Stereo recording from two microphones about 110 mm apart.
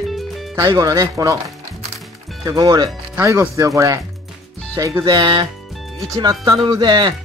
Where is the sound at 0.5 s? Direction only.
30° right (ahead or behind).